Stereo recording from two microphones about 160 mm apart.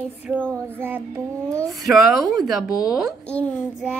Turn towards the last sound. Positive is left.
turn(degrees=10)  # may be behind; listen again after turning